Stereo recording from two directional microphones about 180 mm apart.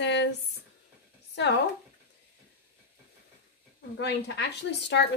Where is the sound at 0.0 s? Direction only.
75° left (ahead or behind).